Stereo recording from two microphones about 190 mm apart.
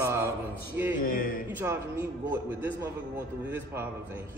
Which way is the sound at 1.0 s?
45° left (ahead or behind).